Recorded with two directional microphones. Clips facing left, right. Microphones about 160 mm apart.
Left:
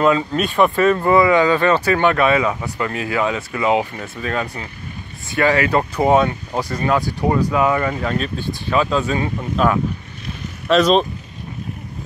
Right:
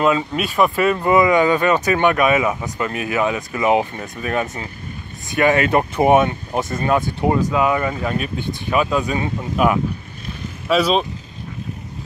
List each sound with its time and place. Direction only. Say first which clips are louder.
0.0 s speech: left 2 dB; 15° right (ahead or behind)